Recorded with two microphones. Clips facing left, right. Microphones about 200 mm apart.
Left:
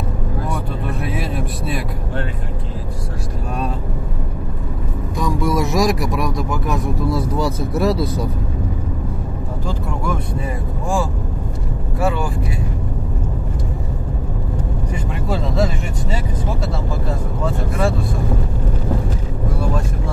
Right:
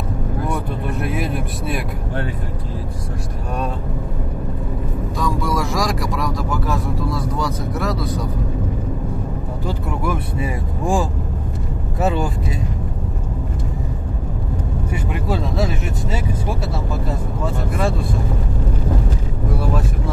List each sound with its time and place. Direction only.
1.0 s a sound: centre (ahead or behind)
5.1 s speech: 20° left (ahead or behind)
10.0 s speech: 10° right (ahead or behind)
15.2 s speech: centre (ahead or behind)